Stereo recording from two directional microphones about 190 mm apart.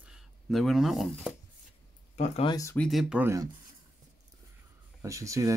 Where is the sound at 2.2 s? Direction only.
30° left (ahead or behind).